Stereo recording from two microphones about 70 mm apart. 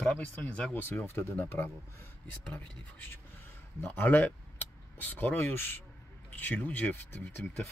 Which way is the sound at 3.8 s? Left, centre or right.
Left.